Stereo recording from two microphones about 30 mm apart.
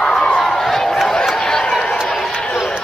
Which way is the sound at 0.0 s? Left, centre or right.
Centre.